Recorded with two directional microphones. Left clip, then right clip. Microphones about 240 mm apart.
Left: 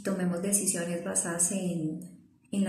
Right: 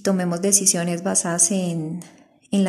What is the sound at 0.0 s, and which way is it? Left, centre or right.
A woman's voice, right.